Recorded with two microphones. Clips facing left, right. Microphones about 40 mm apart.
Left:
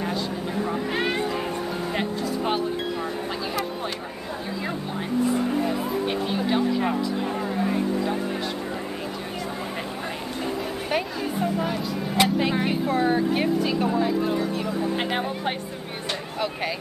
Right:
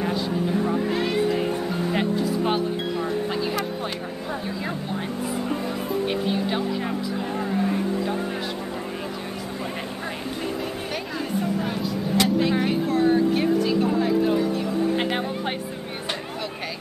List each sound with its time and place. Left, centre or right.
0.9 s music: left
1.9 s music: centre
12.2 s speech: centre
13.8 s speech: centre